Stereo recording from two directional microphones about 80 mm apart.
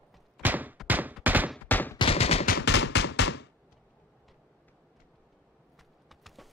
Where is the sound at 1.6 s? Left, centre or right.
Left.